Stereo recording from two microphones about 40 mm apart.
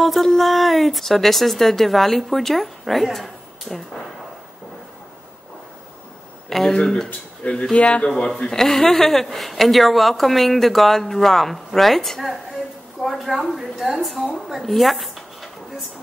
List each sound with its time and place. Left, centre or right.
0.0 s a sound: centre
0.4 s a woman's voice: centre
6.5 s speech: centre
7.7 s speech: left
8.4 s a woman's voice: centre
12.2 s a woman's voice: centre